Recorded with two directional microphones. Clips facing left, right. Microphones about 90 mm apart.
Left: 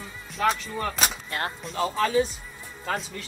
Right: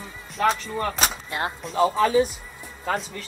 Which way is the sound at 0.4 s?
Centre (ahead or behind).